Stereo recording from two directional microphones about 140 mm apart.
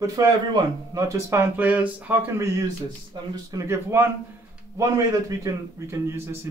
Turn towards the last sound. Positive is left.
turn(degrees=-20)  # may be behind; listen again after turning